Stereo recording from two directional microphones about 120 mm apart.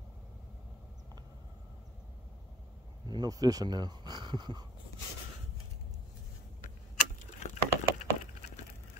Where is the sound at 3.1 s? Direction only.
35° right (ahead or behind).